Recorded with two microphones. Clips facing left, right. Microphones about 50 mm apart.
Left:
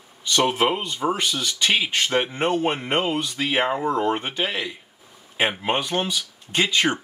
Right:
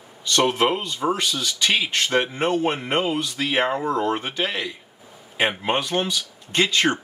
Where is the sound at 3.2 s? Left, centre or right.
Left.